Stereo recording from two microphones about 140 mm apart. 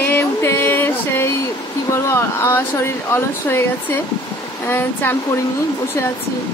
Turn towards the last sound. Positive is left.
turn(degrees=15)  # may be behind; listen again after turning